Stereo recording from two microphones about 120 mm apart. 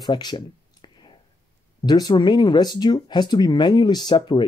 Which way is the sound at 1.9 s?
35° left (ahead or behind).